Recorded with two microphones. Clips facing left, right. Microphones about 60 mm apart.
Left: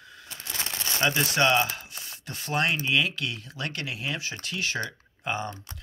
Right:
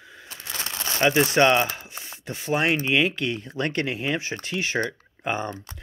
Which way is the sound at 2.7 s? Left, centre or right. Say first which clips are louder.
Right 4 dB; right.